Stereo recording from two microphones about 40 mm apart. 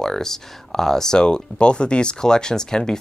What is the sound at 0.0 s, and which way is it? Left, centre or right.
Speech, centre.